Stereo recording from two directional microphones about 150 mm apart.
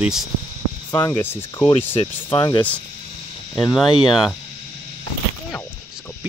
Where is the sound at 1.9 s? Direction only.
35° left (ahead or behind).